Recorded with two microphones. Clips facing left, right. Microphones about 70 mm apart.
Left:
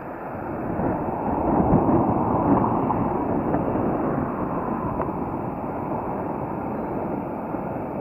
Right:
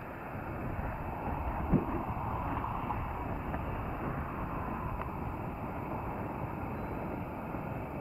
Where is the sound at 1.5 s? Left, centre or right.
Left.